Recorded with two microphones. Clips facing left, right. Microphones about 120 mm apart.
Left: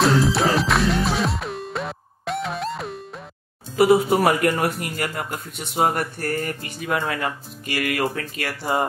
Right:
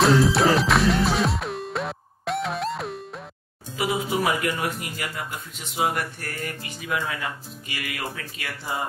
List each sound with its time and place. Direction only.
0.0 s music: centre (ahead or behind)
3.7 s speech: 60° left (ahead or behind)
5.8 s speech: 40° left (ahead or behind); by 8.8 s 60° left (ahead or behind)